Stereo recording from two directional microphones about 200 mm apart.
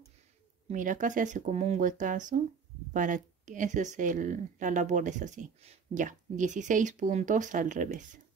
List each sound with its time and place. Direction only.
0.7 s speech: 40° right (ahead or behind)